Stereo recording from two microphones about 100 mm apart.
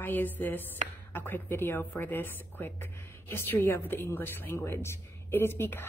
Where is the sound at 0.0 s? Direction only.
20° left (ahead or behind).